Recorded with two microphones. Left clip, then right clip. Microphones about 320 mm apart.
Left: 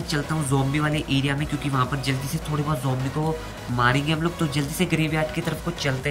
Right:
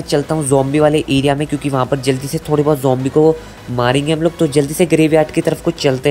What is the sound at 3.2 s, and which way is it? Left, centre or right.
Speech, right.